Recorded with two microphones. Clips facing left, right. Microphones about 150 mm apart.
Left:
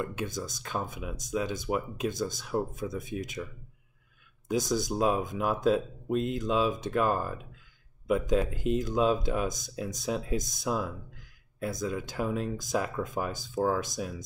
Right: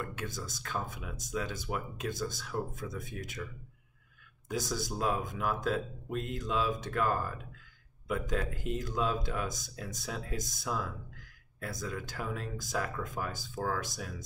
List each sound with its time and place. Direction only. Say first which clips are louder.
0.0 s speech: left 6 dB; 20° left (ahead or behind)
4.5 s speech: left 7 dB; 15° left (ahead or behind)